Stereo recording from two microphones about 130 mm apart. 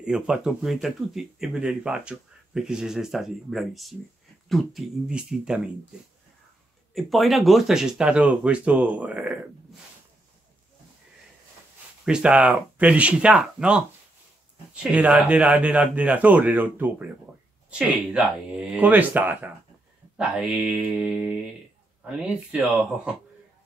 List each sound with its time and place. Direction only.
0.0 s speech: 5° right (ahead or behind)
6.9 s speech: centre (ahead or behind)
12.0 s speech: 5° right (ahead or behind)